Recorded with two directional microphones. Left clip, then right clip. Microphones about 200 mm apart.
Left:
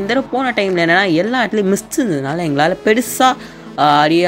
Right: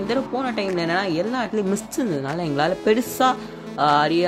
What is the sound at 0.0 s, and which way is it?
Speech, 15° left (ahead or behind).